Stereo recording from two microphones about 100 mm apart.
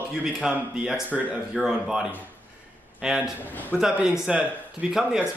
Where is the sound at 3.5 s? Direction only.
15° left (ahead or behind).